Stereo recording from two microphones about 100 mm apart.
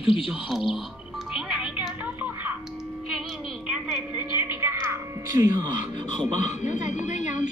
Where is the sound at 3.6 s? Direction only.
10° right (ahead or behind).